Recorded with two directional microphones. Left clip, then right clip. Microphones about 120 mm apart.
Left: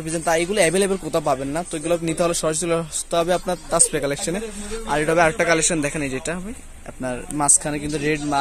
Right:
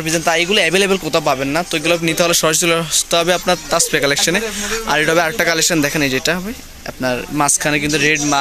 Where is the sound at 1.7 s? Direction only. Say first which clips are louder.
Right 6 dB; 20° left (ahead or behind).